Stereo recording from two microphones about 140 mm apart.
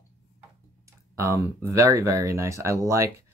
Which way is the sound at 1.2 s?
20° right (ahead or behind).